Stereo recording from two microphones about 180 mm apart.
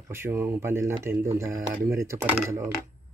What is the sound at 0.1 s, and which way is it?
Speech, 15° right (ahead or behind).